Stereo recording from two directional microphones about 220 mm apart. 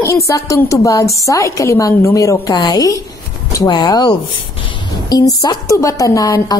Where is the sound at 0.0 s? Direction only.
15° left (ahead or behind).